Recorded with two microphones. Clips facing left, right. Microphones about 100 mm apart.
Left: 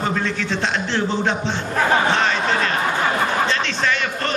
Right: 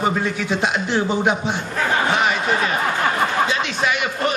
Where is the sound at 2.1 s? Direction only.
10° right (ahead or behind).